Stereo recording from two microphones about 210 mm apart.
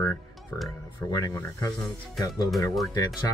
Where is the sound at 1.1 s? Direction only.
15° left (ahead or behind).